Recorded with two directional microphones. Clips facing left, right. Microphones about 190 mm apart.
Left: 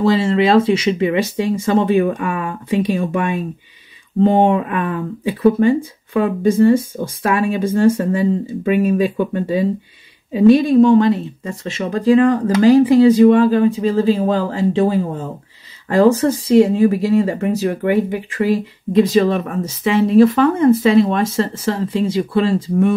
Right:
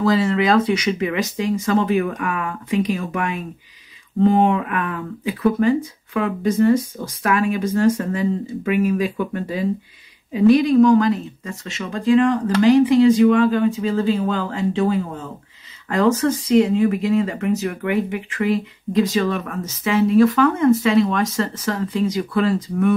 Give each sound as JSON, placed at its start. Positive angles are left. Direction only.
{"t": 0.0, "sound": "speech", "side_deg": 25}